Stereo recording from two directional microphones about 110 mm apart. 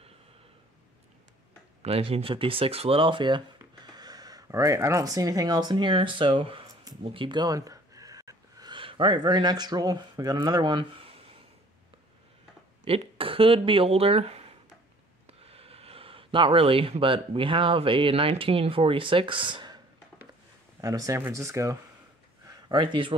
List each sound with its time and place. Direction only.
1.8 s speech: 60° right (ahead or behind)
7.2 s a sound: 45° right (ahead or behind)
8.7 s speech: 50° right (ahead or behind)
12.8 s speech: 65° right (ahead or behind); by 19.8 s 45° right (ahead or behind)
20.8 s speech: 30° right (ahead or behind)
22.5 s speech: 45° right (ahead or behind)